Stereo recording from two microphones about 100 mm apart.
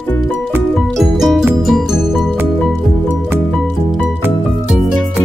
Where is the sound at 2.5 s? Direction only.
10° left (ahead or behind).